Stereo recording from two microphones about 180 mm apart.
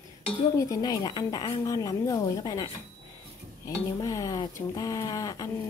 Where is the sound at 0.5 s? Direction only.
20° left (ahead or behind).